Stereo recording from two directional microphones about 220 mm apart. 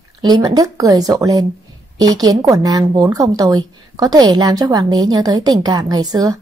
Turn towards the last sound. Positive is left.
turn(degrees=-15)  # may be behind; listen again after turning